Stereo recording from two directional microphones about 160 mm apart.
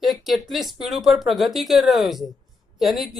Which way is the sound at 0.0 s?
Centre (ahead or behind).